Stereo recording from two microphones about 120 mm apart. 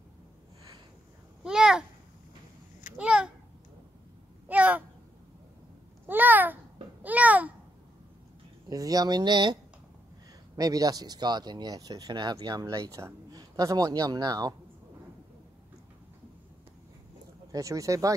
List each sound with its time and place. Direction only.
1.4 s a child's voice: 5° right (ahead or behind)
3.0 s a sound: 5° right (ahead or behind)
4.5 s a sound: 15° right (ahead or behind)
6.0 s babbling: 15° right (ahead or behind)
8.6 s speech: 30° right (ahead or behind)
17.5 s speech: 25° right (ahead or behind)